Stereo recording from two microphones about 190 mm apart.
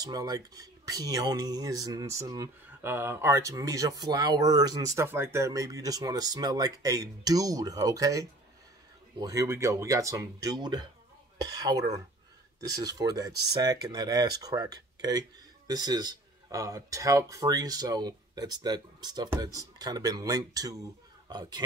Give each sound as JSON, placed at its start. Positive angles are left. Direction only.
{"t": 0.0, "sound": "speech", "side_deg": -20}